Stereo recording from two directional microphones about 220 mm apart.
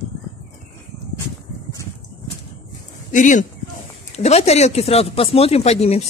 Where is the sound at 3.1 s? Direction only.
35° left (ahead or behind).